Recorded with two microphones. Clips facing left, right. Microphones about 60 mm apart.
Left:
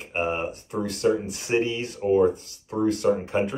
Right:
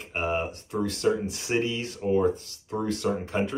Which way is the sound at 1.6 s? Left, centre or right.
Left.